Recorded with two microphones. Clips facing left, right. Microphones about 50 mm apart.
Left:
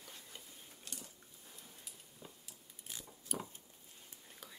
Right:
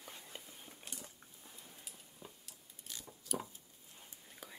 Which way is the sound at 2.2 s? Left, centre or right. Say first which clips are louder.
Right 1 dB; centre.